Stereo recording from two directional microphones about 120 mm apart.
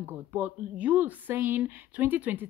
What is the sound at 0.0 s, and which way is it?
A woman's voice, 15° right (ahead or behind).